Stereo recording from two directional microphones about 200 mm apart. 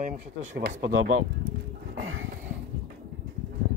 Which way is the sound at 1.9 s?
70° right (ahead or behind).